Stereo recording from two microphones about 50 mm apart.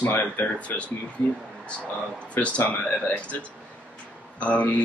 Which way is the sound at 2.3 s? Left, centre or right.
Left.